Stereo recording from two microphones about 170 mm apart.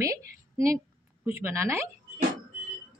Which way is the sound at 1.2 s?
15° right (ahead or behind).